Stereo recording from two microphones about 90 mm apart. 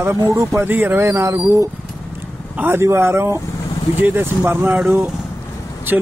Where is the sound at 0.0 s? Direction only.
35° right (ahead or behind).